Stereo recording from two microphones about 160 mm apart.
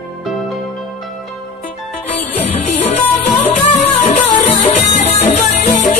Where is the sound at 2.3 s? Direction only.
40° left (ahead or behind).